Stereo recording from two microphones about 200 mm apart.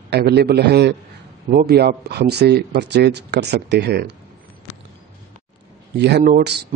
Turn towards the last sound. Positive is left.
turn(degrees=-50)  # may be behind; listen again after turning